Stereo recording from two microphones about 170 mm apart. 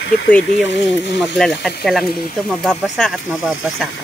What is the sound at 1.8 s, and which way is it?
Speech, centre (ahead or behind).